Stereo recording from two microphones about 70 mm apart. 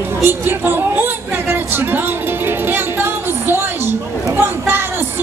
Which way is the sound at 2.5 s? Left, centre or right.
Right.